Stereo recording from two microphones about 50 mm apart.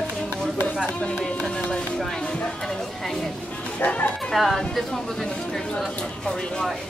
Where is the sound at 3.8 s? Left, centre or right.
Left.